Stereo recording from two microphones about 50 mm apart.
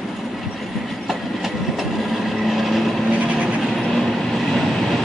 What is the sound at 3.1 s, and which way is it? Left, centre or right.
Vehicle, right.